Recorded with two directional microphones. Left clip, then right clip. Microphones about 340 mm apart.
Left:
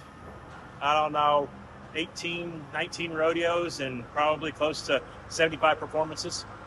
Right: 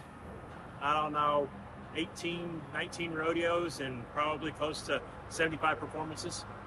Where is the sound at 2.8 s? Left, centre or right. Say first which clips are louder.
Left 8 dB; centre.